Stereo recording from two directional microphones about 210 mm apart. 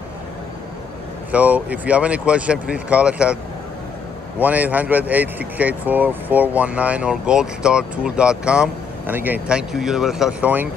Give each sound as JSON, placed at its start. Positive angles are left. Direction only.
{"t": 1.3, "sound": "speech", "side_deg": -5}
{"t": 4.4, "sound": "speech", "side_deg": -5}